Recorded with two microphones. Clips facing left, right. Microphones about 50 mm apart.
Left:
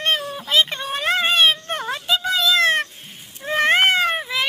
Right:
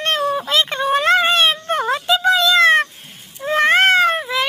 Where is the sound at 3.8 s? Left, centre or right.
Centre.